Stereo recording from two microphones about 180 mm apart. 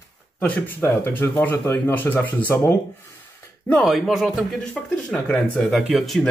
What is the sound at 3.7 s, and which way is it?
Speech, centre (ahead or behind).